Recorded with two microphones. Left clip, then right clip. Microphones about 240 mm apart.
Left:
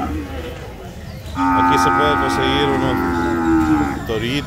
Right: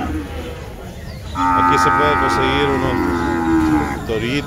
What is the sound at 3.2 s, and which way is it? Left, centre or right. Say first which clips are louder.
Livestock: left 1 dB; right.